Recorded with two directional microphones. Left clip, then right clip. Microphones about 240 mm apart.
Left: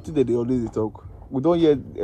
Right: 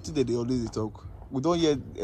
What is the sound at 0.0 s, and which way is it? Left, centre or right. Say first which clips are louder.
A man's voice: left 6 dB; centre.